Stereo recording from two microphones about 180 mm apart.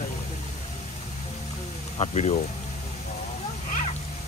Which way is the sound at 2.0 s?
40° left (ahead or behind).